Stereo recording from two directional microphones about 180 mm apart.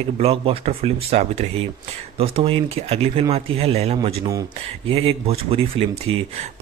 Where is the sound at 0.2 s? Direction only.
35° right (ahead or behind).